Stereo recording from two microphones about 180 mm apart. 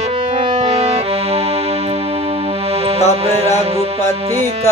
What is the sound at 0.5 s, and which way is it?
Accordion, 35° right (ahead or behind).